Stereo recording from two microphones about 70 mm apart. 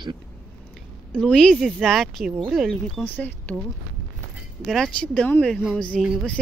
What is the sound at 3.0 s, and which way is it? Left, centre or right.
Speech, left.